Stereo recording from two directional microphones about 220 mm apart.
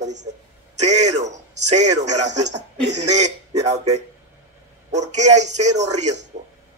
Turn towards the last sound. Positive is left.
turn(degrees=-30)  # may be behind; listen again after turning